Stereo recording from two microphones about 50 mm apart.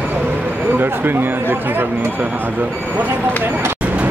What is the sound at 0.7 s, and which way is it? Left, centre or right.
Speech, right.